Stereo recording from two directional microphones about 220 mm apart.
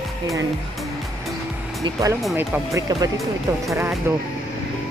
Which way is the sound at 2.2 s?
10° right (ahead or behind).